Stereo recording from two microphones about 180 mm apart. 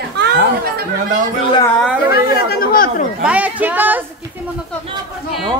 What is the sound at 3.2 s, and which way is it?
Speech, 10° right (ahead or behind).